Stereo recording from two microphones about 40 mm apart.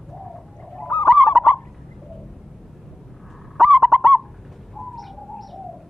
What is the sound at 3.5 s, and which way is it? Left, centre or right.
Bird, centre.